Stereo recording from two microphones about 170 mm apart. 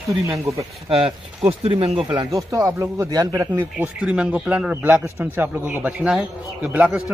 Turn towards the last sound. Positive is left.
turn(degrees=-10)  # may be behind; listen again after turning